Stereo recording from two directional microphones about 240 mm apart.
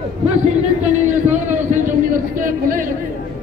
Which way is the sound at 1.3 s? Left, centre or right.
Right.